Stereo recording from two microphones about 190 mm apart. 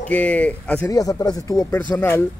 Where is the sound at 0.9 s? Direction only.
20° left (ahead or behind).